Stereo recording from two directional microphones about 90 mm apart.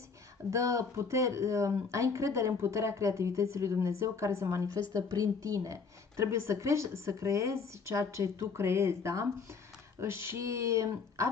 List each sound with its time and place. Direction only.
0.5 s a woman's voice: 35° right (ahead or behind)